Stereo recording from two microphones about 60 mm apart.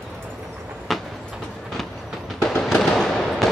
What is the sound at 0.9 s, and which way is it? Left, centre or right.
Train, centre.